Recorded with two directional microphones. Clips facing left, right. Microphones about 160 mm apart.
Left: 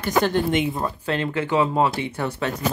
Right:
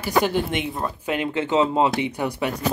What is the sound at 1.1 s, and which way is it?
Speech, 15° right (ahead or behind).